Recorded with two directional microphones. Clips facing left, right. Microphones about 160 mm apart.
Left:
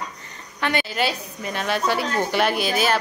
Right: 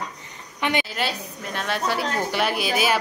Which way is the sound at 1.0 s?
5° left (ahead or behind).